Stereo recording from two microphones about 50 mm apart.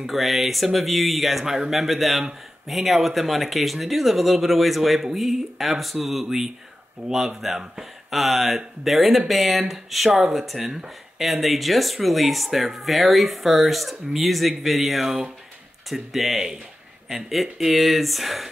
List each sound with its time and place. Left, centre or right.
0.0 s speech: centre
7.0 s speech: right
7.4 s speech: centre
10.6 s speech: centre
11.4 s speech: centre
17.6 s speech: centre